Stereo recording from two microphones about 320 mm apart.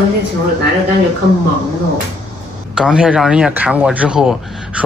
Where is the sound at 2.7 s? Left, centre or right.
Centre.